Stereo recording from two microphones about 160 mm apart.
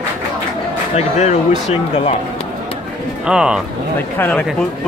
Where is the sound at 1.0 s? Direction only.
45° left (ahead or behind).